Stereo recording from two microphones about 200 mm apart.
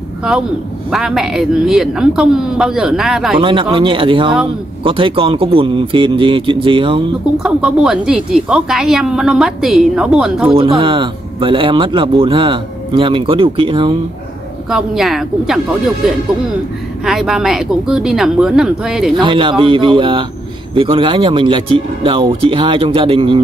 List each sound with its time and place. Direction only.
0.9 s speech: centre (ahead or behind)
3.3 s speech: 25° right (ahead or behind)
7.3 s speech: 5° right (ahead or behind)
10.8 s speech: 25° right (ahead or behind)
14.7 s speech: centre (ahead or behind)
17.0 s speech: centre (ahead or behind)
19.2 s speech: 25° right (ahead or behind)